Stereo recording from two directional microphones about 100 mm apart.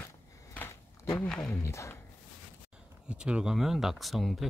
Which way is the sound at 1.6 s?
30° left (ahead or behind).